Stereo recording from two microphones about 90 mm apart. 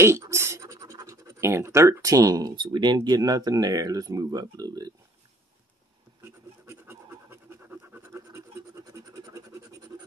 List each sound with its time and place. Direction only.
0.0 s scratch: 30° right (ahead or behind)
2.5 s speech: 60° right (ahead or behind); by 4.9 s 45° right (ahead or behind)
6.7 s scratch: 25° right (ahead or behind)
8.9 s scratch: 35° right (ahead or behind)